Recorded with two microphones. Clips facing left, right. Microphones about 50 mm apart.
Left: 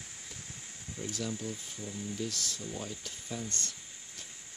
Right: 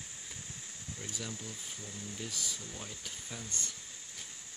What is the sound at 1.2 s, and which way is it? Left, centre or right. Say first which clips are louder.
Speech: left 6 dB; centre.